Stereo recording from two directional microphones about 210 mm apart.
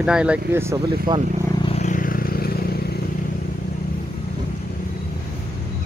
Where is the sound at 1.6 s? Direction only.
30° left (ahead or behind); by 3.0 s 50° left (ahead or behind).